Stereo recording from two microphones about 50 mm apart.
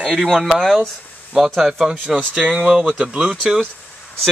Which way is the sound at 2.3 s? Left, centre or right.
Right.